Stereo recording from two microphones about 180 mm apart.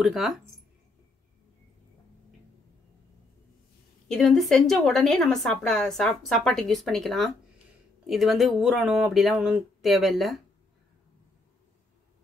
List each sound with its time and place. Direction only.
0.0 s a woman's voice: centre (ahead or behind)
4.1 s a woman's voice: centre (ahead or behind)